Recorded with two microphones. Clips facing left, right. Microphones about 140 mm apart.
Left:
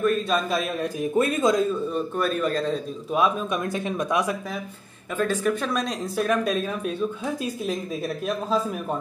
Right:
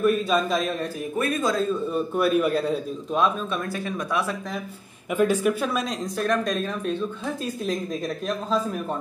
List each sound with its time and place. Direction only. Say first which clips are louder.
0.0 s speech: right 1 dB; 5° right (ahead or behind)
1.1 s speech: left 3 dB; 25° left (ahead or behind)
1.9 s a man's voice: right 3 dB; 10° right (ahead or behind)
3.1 s speech: left 1 dB; 10° left (ahead or behind)
5.1 s speech: right 3 dB; 10° right (ahead or behind); by 8.5 s 5° left (ahead or behind)